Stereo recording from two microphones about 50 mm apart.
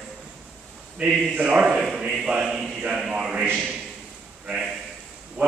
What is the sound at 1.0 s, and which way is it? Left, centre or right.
Speech, right.